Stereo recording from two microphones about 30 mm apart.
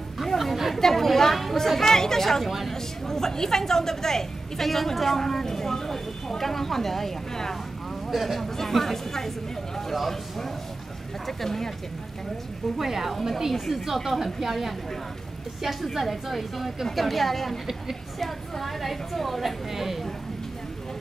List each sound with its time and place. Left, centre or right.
0.2 s a sound: centre
0.7 s chatter: centre
1.8 s a woman's voice: centre
2.4 s a woman's voice: centre
2.7 s a woman's voice: centre
8.1 s speech: centre
8.4 s a woman's voice: centre
12.7 s a woman's voice: centre
19.7 s a woman's voice: centre